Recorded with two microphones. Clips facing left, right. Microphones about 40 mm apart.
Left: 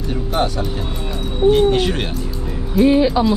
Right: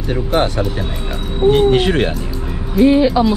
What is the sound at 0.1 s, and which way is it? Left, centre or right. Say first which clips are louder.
Speech: right 4 dB; right.